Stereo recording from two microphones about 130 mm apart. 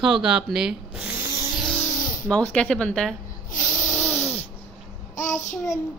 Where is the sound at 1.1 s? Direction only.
20° right (ahead or behind).